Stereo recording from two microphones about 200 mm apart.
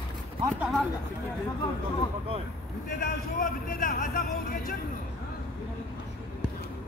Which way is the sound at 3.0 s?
45° left (ahead or behind).